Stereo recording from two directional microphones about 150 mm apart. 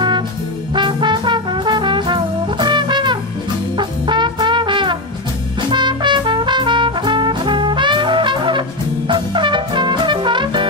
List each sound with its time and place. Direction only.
0.7 s brass instrument: 30° right (ahead or behind)
5.7 s trumpet: 30° right (ahead or behind)